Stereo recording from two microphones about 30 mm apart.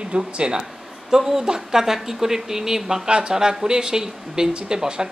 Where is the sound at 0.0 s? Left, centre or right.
Right.